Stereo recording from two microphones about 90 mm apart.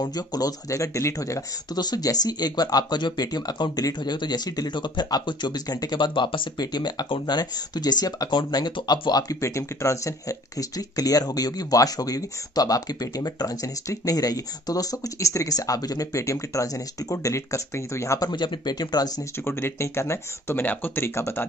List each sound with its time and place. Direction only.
0.0 s speech: 45° left (ahead or behind)
1.8 s speech: 45° left (ahead or behind)
9.3 s speech: 35° left (ahead or behind)
18.3 s speech: 60° left (ahead or behind)
19.3 s speech: 25° left (ahead or behind)